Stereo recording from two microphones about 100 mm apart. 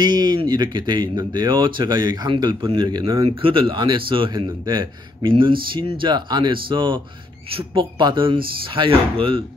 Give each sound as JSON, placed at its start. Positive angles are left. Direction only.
{"t": 0.0, "sound": "speech", "side_deg": -45}
{"t": 3.2, "sound": "a man's voice", "side_deg": -65}
{"t": 7.4, "sound": "speech", "side_deg": -70}
{"t": 8.0, "sound": "a man's voice", "side_deg": -55}